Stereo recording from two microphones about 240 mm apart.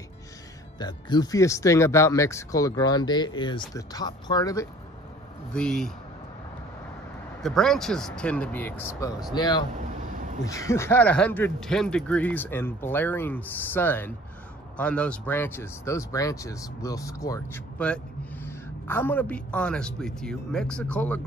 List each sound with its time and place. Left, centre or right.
0.7 s speech: centre
5.5 s speech: centre
7.4 s speech: centre
9.8 s a sound: right
10.4 s speech: centre